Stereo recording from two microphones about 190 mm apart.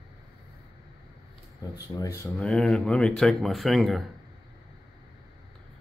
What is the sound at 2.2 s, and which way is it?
Speech, 5° left (ahead or behind).